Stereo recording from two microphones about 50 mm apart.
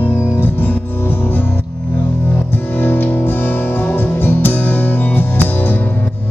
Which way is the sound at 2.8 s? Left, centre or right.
Left.